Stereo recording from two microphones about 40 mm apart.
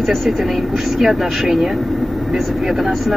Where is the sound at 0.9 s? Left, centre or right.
Centre.